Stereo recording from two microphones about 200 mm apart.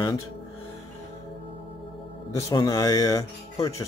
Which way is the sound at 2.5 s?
20° left (ahead or behind).